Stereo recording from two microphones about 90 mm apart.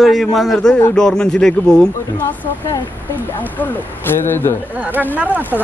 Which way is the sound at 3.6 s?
20° left (ahead or behind).